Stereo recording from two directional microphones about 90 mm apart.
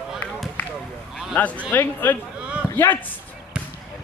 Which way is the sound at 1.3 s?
15° left (ahead or behind).